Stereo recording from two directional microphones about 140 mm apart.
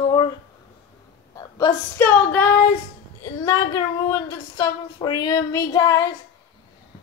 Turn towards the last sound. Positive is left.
turn(degrees=25)  # may be behind; listen again after turning